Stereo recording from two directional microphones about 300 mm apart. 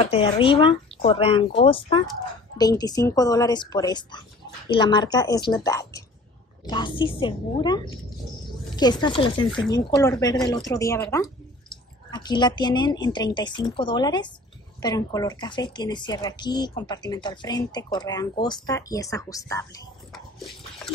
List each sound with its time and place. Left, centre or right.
0.0 s speech: centre